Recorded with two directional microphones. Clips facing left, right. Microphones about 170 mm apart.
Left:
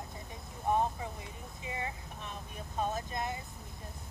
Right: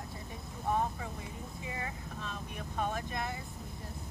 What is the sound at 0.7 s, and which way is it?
Speech, 20° left (ahead or behind).